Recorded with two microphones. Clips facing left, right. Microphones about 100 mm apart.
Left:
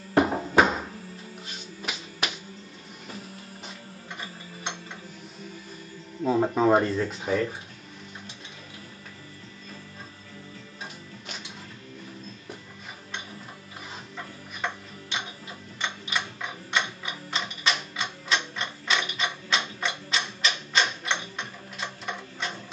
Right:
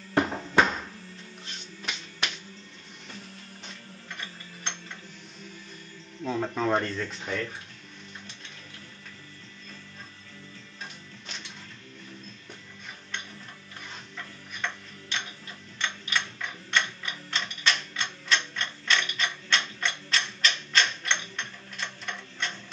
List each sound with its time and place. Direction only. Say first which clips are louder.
0.1 s a sound: left 4 dB; 10° left (ahead or behind)
0.6 s music: left 2 dB; 5° left (ahead or behind)
3.6 s mechanisms: left 1 dB; 5° left (ahead or behind)
6.2 s speech: left 6 dB; 15° left (ahead or behind)
11.2 s music: left 2 dB; 5° left (ahead or behind)
14.1 s tick-tock: left 3 dB; 5° left (ahead or behind)
15.8 s mechanisms: even; 5° left (ahead or behind)